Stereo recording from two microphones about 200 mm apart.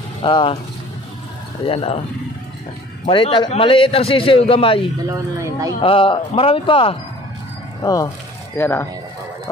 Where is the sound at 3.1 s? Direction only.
25° left (ahead or behind).